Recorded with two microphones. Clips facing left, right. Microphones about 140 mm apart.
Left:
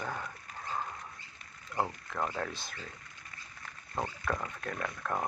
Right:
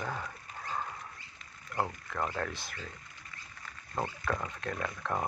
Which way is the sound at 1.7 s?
10° left (ahead or behind).